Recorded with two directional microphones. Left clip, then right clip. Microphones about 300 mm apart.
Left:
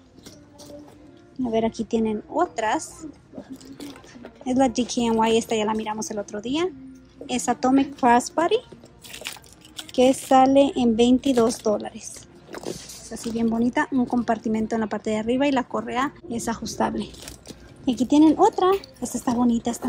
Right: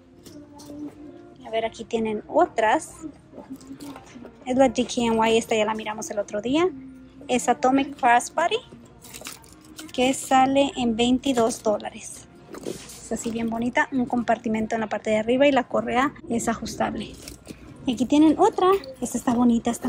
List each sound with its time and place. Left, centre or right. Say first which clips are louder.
1.4 s a woman's voice: left 3 dB; centre
4.5 s a woman's voice: right 2 dB; centre
9.1 s a sound: left 4 dB; centre
10.2 s a woman's voice: left 1 dB; centre
18.9 s speech: right 1 dB; left
19.2 s a woman's voice: right 1 dB; centre